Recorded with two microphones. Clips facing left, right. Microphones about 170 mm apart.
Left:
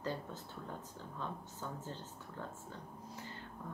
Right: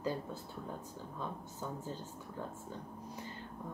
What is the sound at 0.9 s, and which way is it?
Speech, 10° right (ahead or behind).